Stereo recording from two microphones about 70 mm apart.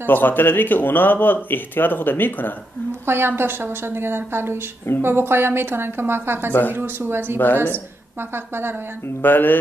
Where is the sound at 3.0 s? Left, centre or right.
Right.